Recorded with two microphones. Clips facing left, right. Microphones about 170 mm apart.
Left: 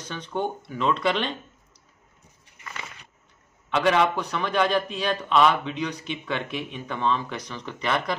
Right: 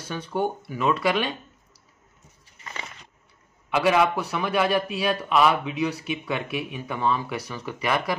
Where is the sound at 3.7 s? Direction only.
5° right (ahead or behind).